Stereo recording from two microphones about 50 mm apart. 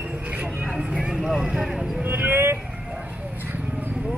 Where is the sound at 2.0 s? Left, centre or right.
Right.